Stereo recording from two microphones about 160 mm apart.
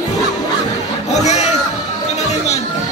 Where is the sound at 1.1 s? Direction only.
45° left (ahead or behind).